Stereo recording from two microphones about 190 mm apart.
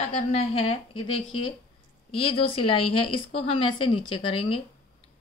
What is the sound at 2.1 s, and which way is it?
A woman's voice, 30° left (ahead or behind).